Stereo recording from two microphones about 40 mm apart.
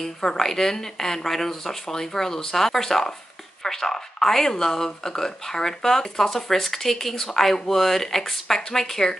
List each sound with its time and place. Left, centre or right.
0.0 s speech: centre